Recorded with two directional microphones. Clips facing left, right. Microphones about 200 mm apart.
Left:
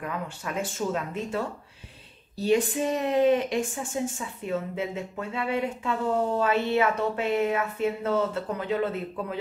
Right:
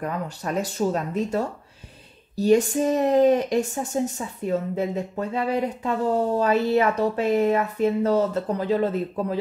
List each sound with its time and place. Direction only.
0.0 s speech: 40° right (ahead or behind)